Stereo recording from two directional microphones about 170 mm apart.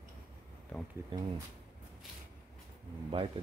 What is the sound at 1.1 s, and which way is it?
Speech, 20° right (ahead or behind).